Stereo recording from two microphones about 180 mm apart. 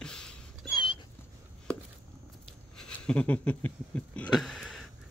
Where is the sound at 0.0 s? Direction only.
5° left (ahead or behind).